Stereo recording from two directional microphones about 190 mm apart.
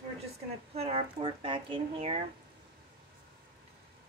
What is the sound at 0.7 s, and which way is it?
Speech, 30° right (ahead or behind).